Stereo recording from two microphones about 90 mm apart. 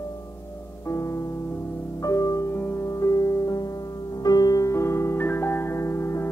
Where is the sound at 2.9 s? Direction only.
40° left (ahead or behind).